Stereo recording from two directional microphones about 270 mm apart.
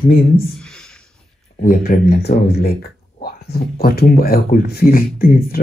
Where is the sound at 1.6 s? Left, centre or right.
Left.